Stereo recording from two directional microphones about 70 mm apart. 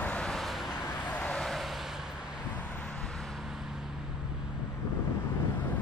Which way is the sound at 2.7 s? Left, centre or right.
Centre.